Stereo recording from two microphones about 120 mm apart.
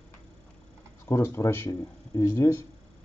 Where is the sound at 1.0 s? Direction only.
20° left (ahead or behind).